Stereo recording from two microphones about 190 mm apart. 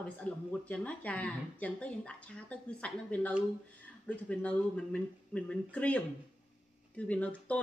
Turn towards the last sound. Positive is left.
turn(degrees=5)  # may be behind; listen again after turning